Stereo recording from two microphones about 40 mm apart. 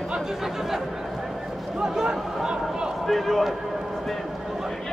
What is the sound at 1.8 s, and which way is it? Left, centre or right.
Speech, centre.